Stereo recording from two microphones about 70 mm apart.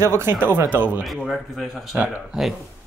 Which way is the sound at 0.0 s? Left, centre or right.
Right.